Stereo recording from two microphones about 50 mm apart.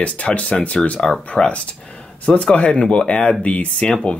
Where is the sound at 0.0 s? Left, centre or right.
Left.